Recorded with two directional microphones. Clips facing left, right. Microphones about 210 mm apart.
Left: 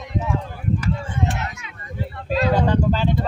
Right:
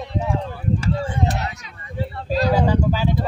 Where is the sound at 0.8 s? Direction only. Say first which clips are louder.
Right 2 dB; 35° right (ahead or behind).